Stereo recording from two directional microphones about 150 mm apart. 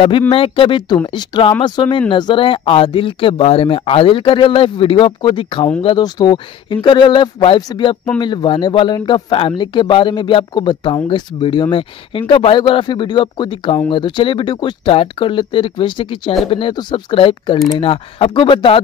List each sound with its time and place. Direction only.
0.3 s speech: 35° left (ahead or behind)